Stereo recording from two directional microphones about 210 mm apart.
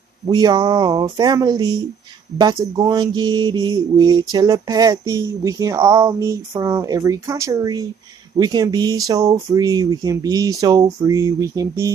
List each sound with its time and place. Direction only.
0.3 s speech: 20° right (ahead or behind)
2.3 s mantra: 15° right (ahead or behind)